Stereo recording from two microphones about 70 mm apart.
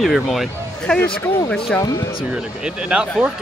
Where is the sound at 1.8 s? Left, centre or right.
Left.